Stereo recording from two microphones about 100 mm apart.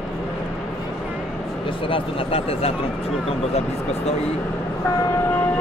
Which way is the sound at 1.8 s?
65° left (ahead or behind).